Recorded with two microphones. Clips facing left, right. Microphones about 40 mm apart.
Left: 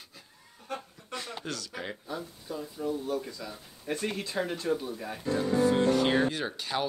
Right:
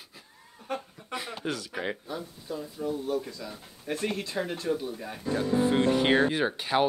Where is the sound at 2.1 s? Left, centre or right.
Centre.